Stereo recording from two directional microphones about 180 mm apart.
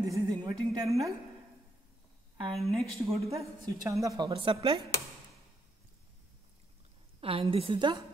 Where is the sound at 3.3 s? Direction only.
20° right (ahead or behind).